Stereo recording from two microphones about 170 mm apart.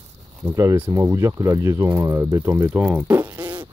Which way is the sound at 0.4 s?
20° right (ahead or behind).